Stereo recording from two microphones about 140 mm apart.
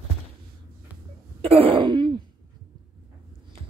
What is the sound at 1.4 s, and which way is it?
Throat clearing, 45° right (ahead or behind).